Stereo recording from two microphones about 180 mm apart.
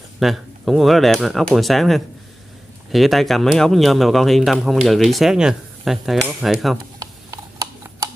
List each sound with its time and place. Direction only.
0.2 s speech: centre (ahead or behind)
7.0 s tick-tock: 15° right (ahead or behind)